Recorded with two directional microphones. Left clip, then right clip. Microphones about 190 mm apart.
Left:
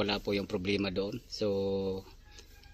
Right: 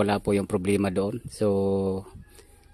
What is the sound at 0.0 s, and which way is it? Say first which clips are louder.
Speech: right 8 dB; 30° right (ahead or behind).